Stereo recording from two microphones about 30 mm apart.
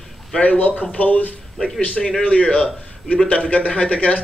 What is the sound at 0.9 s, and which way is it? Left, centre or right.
Speech, left.